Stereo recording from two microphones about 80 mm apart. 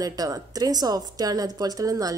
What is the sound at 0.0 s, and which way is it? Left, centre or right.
Speech, right.